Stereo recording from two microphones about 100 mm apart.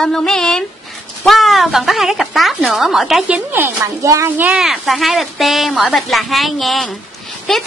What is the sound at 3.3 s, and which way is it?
Speech, 20° right (ahead or behind).